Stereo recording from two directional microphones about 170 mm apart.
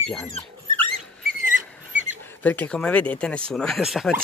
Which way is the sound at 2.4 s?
10° left (ahead or behind).